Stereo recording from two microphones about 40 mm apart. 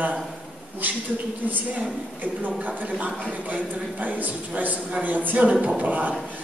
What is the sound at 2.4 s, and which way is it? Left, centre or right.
A man's voice, right.